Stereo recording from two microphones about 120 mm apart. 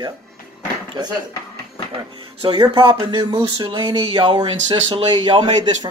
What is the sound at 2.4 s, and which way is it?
Speech, 40° right (ahead or behind).